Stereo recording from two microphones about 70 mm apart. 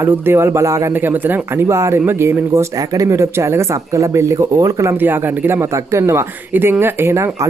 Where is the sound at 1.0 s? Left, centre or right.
Right.